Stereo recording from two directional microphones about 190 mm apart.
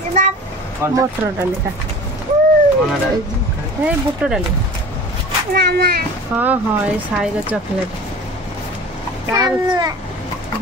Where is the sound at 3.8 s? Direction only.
5° right (ahead or behind).